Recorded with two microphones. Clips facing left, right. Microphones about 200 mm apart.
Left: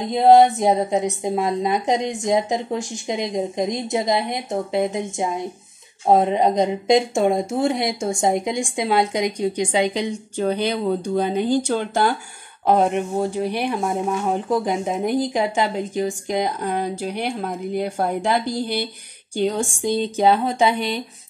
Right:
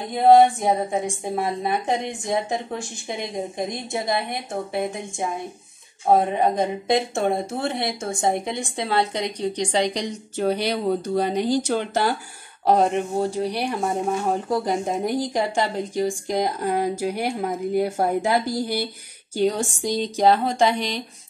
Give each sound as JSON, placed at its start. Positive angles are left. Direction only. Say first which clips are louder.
{"t": 0.1, "sound": "a woman's voice", "louder": "left 1 dB", "side_deg": 20}